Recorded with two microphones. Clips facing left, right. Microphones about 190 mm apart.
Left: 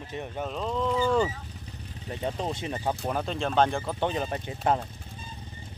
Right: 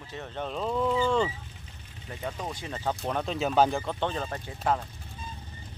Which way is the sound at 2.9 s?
Centre (ahead or behind).